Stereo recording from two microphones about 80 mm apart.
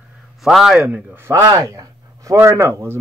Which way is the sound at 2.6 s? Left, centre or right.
Right.